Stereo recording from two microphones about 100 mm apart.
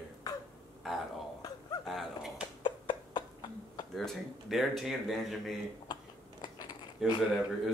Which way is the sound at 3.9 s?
5° left (ahead or behind).